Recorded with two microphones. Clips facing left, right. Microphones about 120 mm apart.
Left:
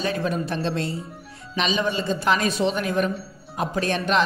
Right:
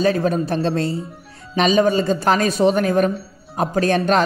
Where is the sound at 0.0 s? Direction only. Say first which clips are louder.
Right 7 dB; 40° right (ahead or behind).